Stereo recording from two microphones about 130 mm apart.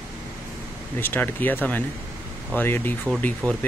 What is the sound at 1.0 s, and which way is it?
Speech, 15° left (ahead or behind).